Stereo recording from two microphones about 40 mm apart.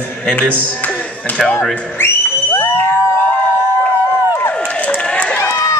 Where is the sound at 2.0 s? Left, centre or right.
Left.